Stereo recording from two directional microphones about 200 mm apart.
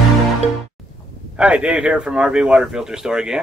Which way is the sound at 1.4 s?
5° right (ahead or behind).